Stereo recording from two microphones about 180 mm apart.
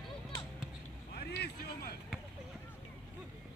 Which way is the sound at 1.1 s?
60° left (ahead or behind).